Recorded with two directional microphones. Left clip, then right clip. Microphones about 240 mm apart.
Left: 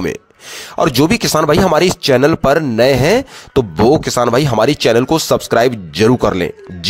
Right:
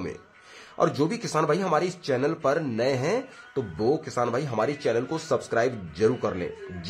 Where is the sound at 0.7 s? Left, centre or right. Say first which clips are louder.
Left 12 dB; left.